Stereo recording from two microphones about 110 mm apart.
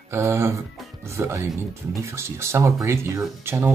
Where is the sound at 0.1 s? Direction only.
25° right (ahead or behind).